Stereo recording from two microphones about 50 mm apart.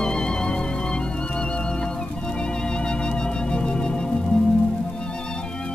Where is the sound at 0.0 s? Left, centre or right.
Centre.